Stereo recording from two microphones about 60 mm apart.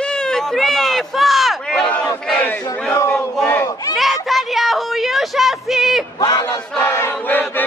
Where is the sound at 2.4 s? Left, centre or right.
Left.